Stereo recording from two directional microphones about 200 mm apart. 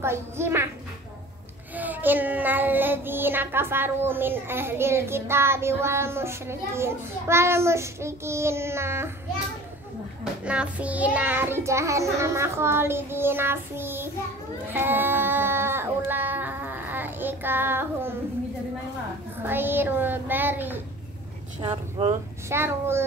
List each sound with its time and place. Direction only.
0.0 s child singing: 10° right (ahead or behind)
1.8 s child singing: 10° right (ahead or behind)
10.4 s child singing: 5° right (ahead or behind)
14.7 s a sound: 10° right (ahead or behind)
19.4 s child singing: 10° right (ahead or behind)
21.5 s speech: 25° right (ahead or behind)
22.5 s child singing: 10° right (ahead or behind)